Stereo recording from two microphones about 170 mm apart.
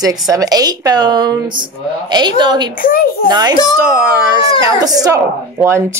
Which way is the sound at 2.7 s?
55° left (ahead or behind).